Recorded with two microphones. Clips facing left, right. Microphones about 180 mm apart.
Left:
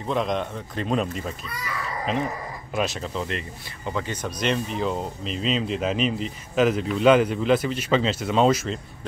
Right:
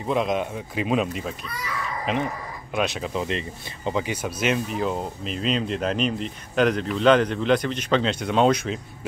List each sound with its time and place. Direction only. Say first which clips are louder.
0.0 s speech: right 2 dB; 5° right (ahead or behind)
2.7 s speech: right 1 dB; centre (ahead or behind)
3.1 s speech: right 3 dB; 15° right (ahead or behind); by 8.7 s centre (ahead or behind)